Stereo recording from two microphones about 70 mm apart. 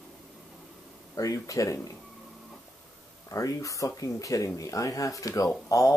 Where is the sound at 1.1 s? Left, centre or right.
Left.